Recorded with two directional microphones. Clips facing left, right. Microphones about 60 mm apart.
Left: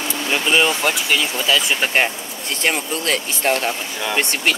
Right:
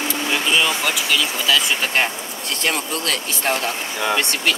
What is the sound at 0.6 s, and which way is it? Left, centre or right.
Speech, left.